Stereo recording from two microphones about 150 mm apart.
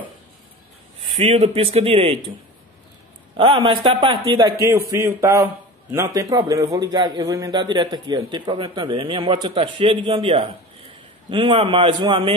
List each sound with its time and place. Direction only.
1.2 s speech: 45° right (ahead or behind)
3.3 s speech: 35° right (ahead or behind)
4.6 s a man's voice: 20° right (ahead or behind); by 12.4 s 40° right (ahead or behind)